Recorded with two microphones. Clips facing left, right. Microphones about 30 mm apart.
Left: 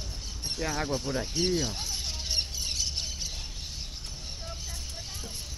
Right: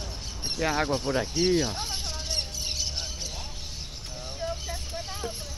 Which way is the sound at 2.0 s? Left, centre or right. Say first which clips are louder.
Even; centre.